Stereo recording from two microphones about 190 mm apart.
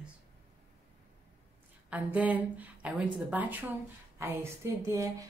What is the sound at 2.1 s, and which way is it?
A woman's voice, 10° right (ahead or behind).